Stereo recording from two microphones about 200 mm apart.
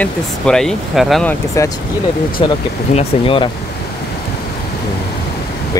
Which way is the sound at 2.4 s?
30° left (ahead or behind).